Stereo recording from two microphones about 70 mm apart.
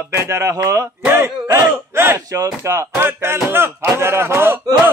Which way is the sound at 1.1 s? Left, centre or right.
Right.